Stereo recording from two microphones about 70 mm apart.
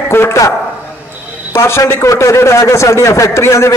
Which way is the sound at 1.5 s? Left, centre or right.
Left.